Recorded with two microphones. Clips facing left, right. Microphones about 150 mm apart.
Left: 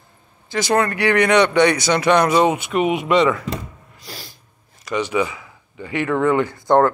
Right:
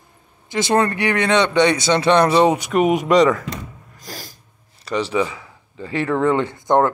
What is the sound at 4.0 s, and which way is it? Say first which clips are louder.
Sneeze: right 2 dB; 40° right (ahead or behind).